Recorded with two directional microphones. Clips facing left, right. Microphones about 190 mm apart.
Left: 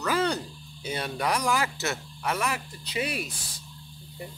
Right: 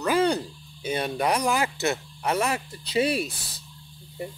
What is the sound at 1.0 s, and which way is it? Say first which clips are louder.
Speech: right 2 dB; 30° right (ahead or behind).